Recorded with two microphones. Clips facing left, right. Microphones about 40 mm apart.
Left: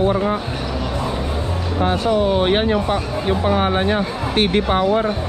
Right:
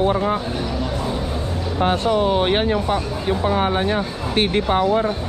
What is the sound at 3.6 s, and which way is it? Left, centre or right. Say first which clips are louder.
Speech: left 2 dB; left.